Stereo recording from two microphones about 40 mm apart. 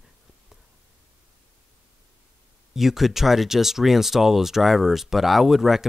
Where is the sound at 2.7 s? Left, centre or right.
Centre.